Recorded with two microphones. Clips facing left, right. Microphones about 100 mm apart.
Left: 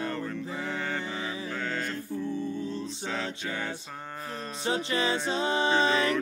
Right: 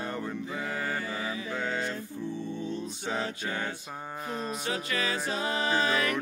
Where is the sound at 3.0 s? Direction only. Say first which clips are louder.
Right 1 dB; 25° right (ahead or behind).